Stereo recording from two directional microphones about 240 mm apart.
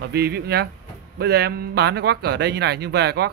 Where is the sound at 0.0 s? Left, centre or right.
Right.